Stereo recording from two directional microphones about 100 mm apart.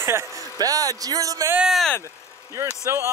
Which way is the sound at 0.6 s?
40° right (ahead or behind).